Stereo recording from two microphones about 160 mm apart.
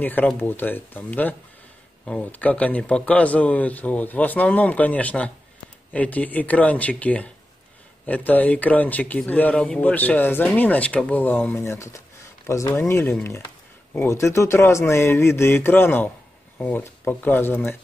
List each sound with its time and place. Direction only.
0.0 s speech: 10° left (ahead or behind)